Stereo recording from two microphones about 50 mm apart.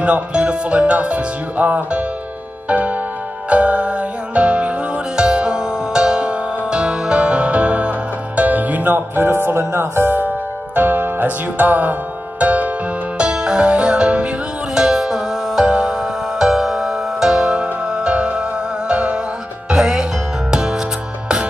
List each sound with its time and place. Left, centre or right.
0.0 s speech: right
2.7 s music: right
13.2 s music: centre
19.7 s music: centre